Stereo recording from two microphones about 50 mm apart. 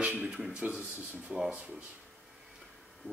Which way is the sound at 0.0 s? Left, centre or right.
Right.